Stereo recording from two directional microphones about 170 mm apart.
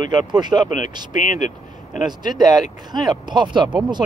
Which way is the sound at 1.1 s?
50° left (ahead or behind).